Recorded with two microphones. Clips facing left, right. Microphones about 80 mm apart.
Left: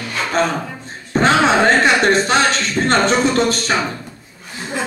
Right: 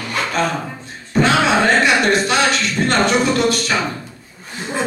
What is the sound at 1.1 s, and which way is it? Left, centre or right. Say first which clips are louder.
Music: left 1 dB; left.